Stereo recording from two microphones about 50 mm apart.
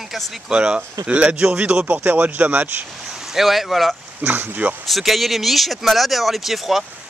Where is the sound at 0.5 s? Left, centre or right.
Centre.